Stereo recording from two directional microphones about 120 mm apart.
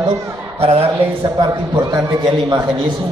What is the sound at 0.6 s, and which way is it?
Speech, 55° right (ahead or behind).